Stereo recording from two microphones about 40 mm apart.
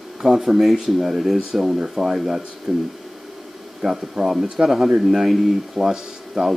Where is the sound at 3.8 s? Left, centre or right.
Centre.